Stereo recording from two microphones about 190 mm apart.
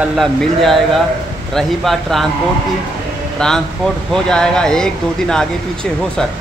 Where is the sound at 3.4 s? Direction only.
5° left (ahead or behind).